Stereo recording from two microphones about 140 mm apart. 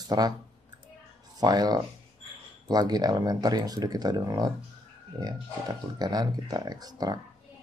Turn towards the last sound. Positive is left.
turn(degrees=-30)  # may be behind; listen again after turning